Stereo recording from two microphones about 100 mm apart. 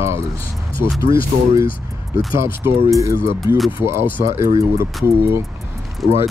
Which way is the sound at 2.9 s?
30° right (ahead or behind).